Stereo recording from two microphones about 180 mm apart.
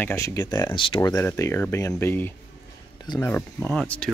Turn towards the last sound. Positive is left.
turn(degrees=5)  # may be behind; listen again after turning